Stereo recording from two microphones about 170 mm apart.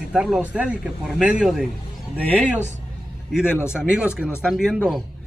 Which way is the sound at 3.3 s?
5° right (ahead or behind).